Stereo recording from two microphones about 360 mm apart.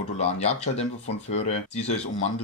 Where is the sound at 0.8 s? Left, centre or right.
Centre.